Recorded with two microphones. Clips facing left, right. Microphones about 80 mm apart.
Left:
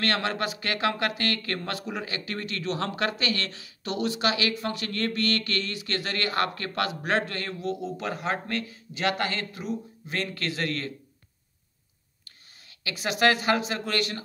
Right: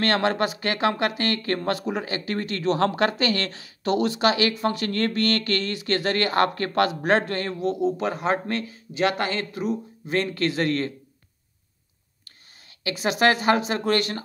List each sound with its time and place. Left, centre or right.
0.0 s speech: right
12.3 s speech: right